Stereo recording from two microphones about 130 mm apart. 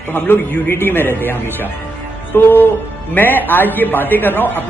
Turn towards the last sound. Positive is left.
turn(degrees=15)  # may be behind; listen again after turning